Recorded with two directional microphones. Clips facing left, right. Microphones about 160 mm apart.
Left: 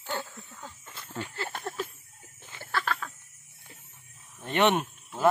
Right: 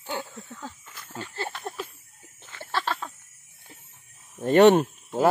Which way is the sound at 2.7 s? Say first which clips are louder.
Right 2 dB; 30° right (ahead or behind).